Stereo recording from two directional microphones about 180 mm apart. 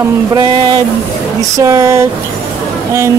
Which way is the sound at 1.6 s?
20° right (ahead or behind).